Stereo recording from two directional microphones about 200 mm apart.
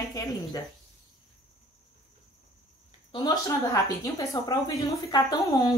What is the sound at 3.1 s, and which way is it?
Speech, 20° left (ahead or behind).